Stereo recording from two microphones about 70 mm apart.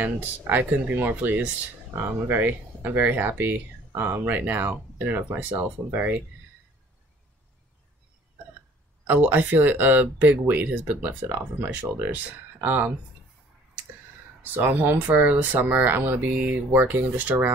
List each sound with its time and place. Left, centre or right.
0.5 s speech: right
9.0 s speech: right
14.4 s speech: right